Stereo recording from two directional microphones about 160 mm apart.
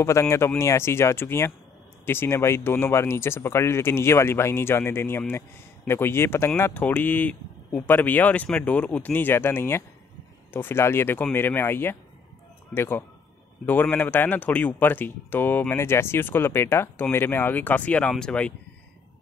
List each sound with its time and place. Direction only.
0.0 s speech: 15° left (ahead or behind)